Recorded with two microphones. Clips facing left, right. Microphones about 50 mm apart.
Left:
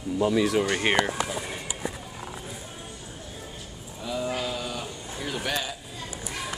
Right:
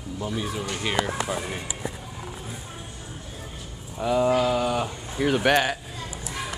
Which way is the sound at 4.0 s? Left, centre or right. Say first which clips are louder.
Right 9 dB; right.